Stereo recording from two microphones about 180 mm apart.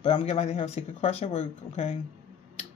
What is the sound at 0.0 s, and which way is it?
Speech, 35° left (ahead or behind).